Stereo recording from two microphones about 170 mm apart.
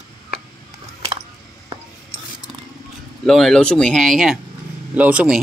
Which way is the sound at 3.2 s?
5° left (ahead or behind).